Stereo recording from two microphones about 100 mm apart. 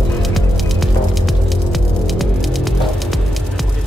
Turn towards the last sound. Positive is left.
turn(degrees=0)  # may be behind; listen again after turning